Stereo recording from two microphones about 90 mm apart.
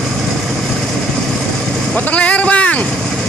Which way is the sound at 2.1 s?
15° left (ahead or behind).